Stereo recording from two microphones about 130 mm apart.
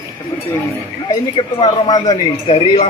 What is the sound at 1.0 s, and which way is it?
Speech, 40° left (ahead or behind).